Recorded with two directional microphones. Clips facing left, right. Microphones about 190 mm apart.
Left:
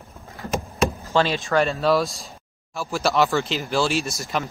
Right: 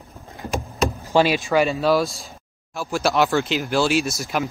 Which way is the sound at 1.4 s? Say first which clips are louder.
Right 1 dB; 5° right (ahead or behind).